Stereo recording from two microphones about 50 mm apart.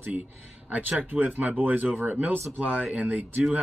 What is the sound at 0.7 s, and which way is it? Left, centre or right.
Speech, right.